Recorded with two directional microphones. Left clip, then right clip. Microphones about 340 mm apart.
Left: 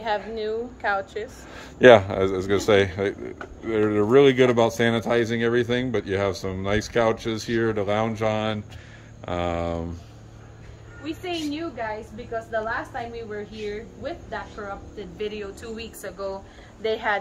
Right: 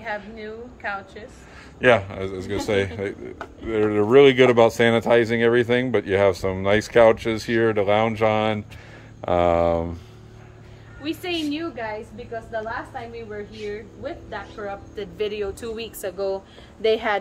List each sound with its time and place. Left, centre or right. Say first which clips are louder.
0.0 s a woman's voice: left 5 dB; left; by 9.8 s centre
11.1 s speech: right 3 dB; centre
12.6 s a woman's voice: left 2 dB; centre
15.0 s a woman's voice: right 6 dB; centre; by 17.2 s right